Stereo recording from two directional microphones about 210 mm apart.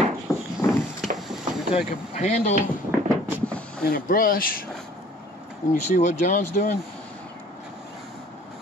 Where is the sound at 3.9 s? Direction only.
40° left (ahead or behind).